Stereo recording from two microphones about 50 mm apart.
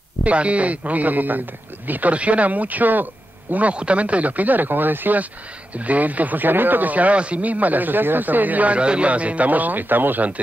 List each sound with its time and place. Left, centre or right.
0.2 s speech: right
3.5 s speech: right